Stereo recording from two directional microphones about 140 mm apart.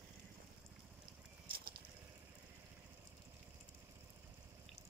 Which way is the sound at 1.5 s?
90° right.